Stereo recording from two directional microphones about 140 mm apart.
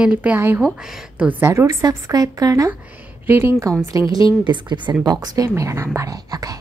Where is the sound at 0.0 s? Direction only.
10° right (ahead or behind).